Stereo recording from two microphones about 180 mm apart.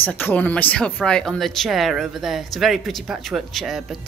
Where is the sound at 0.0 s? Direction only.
10° left (ahead or behind).